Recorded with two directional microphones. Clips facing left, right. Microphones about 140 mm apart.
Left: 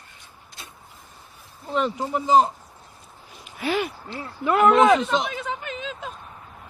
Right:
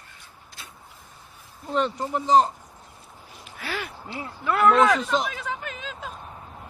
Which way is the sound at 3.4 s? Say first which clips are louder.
Left 8 dB; 20° left (ahead or behind).